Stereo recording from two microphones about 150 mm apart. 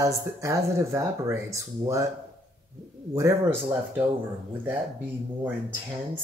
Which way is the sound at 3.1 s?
20° right (ahead or behind).